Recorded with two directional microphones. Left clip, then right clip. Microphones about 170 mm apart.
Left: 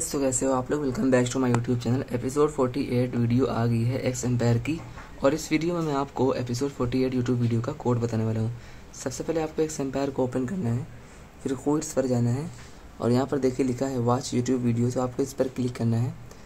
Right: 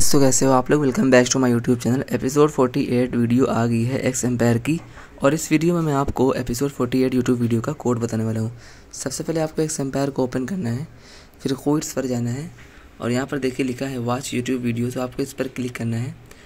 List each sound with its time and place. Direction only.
0.1 s speech: 55° right (ahead or behind); by 13.9 s 10° right (ahead or behind)
14.8 s speech: 30° right (ahead or behind)
15.3 s speech: 10° right (ahead or behind)